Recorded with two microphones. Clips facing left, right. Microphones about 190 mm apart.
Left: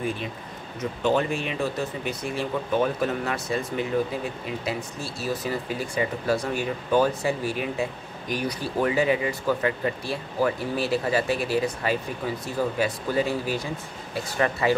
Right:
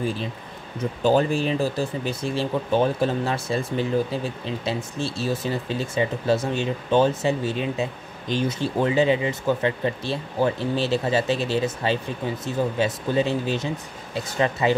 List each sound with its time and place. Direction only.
0.0 s speech: 30° right (ahead or behind)